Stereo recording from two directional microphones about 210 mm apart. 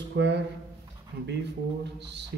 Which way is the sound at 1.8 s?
55° right (ahead or behind).